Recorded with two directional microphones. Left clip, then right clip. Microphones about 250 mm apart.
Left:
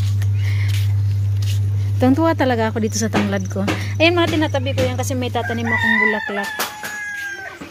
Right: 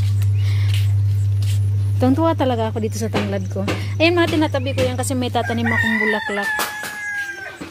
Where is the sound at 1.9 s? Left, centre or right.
Centre.